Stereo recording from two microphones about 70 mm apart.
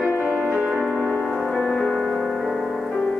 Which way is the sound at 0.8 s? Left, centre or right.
Centre.